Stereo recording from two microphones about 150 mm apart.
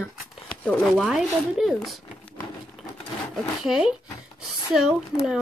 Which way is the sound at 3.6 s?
5° right (ahead or behind).